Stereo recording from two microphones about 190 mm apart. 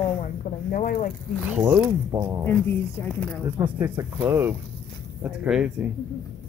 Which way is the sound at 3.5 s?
10° right (ahead or behind).